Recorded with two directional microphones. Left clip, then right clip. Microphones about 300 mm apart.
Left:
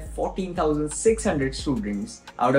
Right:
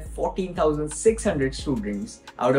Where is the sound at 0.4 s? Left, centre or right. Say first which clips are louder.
Right 1 dB; centre.